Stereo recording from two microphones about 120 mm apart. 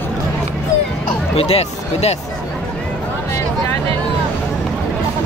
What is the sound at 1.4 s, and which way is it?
Speech, 55° left (ahead or behind).